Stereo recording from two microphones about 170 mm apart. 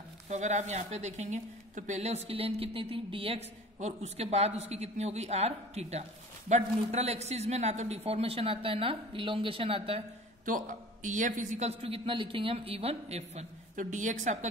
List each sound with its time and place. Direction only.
0.3 s speech: 45° right (ahead or behind)
10.4 s a woman's voice: 50° right (ahead or behind)